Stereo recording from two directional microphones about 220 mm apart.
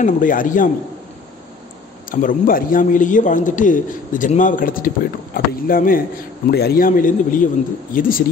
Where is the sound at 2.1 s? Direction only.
40° left (ahead or behind).